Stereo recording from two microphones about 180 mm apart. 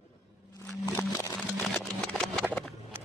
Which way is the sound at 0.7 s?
20° left (ahead or behind).